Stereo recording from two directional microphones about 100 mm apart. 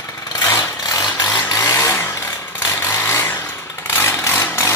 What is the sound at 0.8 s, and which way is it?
Vehicle, 40° left (ahead or behind).